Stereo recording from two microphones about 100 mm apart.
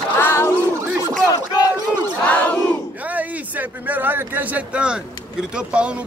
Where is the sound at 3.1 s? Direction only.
15° right (ahead or behind).